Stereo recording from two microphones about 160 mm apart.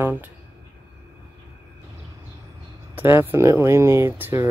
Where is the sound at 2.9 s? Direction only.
15° right (ahead or behind).